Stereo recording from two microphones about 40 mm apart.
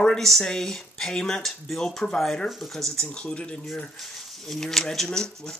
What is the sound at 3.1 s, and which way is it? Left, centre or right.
Speech, left.